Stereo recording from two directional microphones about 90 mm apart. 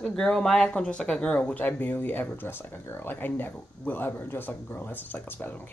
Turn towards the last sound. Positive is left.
turn(degrees=20)  # may be behind; listen again after turning